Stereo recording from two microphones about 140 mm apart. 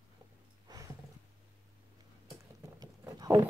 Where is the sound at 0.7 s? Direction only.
30° right (ahead or behind).